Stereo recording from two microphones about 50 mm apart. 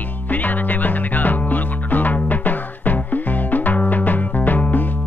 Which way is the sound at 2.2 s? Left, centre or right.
Left.